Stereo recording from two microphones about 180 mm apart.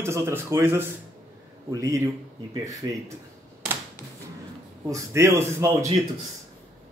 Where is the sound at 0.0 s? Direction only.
15° right (ahead or behind).